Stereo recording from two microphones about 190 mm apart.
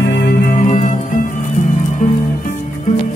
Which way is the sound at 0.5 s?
35° left (ahead or behind).